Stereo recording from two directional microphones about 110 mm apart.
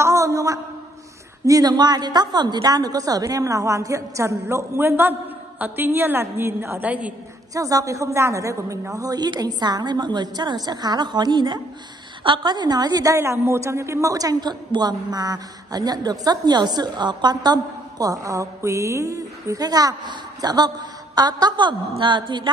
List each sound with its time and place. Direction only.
0.0 s a sound: 25° right (ahead or behind)
1.4 s a woman's voice: 35° right (ahead or behind); by 7.2 s 15° right (ahead or behind)
7.5 s a woman's voice: 30° right (ahead or behind)